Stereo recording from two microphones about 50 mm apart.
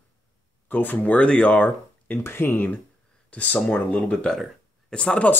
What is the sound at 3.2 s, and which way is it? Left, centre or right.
Speech, left.